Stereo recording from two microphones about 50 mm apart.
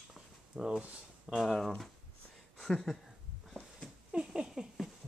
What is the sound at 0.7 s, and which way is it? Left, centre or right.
Speech, centre.